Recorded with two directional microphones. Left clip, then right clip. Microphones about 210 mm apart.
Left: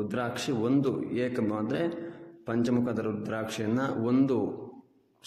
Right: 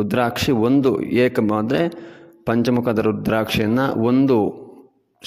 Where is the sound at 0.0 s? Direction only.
45° right (ahead or behind).